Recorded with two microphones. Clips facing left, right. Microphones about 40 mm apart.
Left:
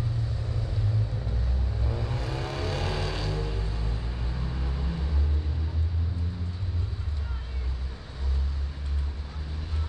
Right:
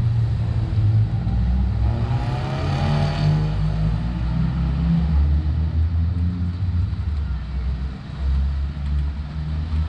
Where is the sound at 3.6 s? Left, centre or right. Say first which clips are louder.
Right 11 dB; right.